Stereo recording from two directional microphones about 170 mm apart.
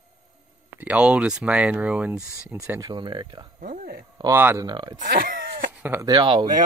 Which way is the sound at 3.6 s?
55° right (ahead or behind).